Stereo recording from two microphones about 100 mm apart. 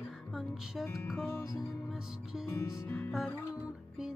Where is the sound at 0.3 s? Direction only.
Centre (ahead or behind).